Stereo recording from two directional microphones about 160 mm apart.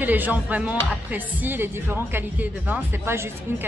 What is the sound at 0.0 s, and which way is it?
A woman's voice, 10° right (ahead or behind).